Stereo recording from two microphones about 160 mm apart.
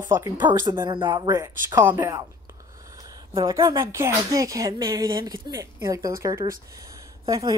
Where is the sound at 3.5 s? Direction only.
20° right (ahead or behind).